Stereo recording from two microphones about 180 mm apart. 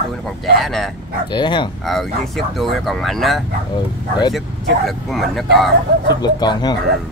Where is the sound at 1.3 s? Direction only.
25° left (ahead or behind).